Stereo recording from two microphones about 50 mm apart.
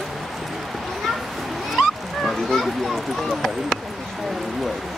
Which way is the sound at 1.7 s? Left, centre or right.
Centre.